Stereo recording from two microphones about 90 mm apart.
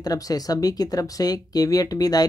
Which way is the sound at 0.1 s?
45° left (ahead or behind).